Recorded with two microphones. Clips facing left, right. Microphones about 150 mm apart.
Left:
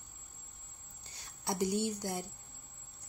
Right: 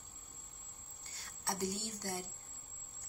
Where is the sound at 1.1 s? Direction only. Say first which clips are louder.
Left 4 dB; 15° left (ahead or behind).